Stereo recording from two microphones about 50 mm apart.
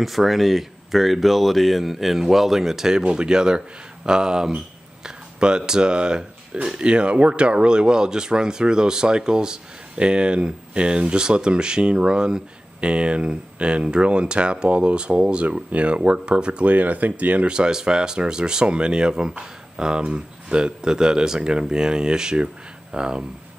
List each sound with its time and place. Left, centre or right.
0.0 s speech: centre
5.0 s a sound: centre
5.6 s speech: centre
16.7 s speech: right
17.5 s speech: centre